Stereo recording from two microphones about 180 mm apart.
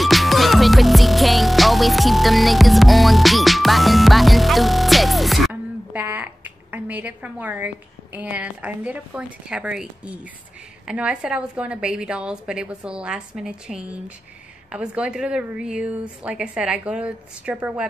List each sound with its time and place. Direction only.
0.0 s music: centre (ahead or behind)
10.9 s a woman's voice: 5° right (ahead or behind)